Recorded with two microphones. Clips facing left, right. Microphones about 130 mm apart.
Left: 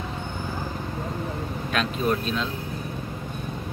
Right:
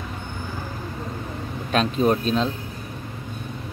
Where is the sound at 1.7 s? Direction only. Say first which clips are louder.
Right 5 dB; 35° right (ahead or behind).